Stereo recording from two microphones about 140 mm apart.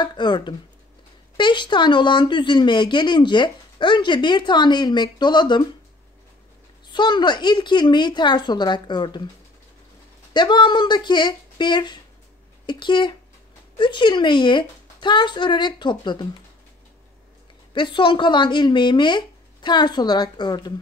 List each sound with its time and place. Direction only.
0.0 s speech: 35° left (ahead or behind)
6.9 s speech: 30° left (ahead or behind)
10.3 s speech: 35° left (ahead or behind)
17.7 s speech: 35° left (ahead or behind)